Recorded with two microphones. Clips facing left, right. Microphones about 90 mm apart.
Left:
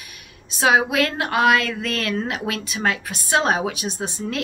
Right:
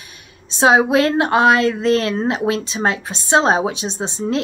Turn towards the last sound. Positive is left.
turn(degrees=-25)  # may be behind; listen again after turning